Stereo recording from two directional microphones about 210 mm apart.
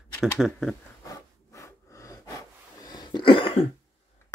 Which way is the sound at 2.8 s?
20° left (ahead or behind).